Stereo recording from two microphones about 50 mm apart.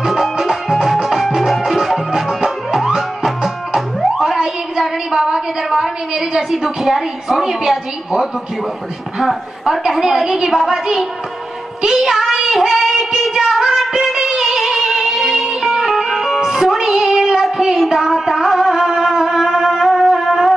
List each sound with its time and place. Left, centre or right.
0.0 s music: centre
9.2 s a woman's voice: centre
11.8 s child singing: centre
14.1 s music: centre